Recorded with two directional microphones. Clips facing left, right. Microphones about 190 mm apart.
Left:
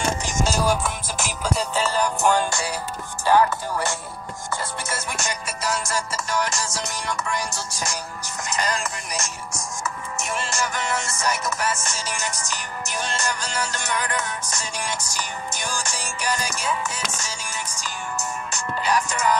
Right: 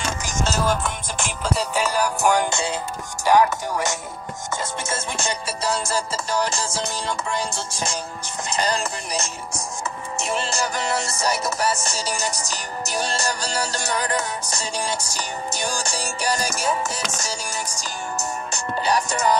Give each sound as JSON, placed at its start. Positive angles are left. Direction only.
{"t": 0.4, "sound": "music", "side_deg": 5}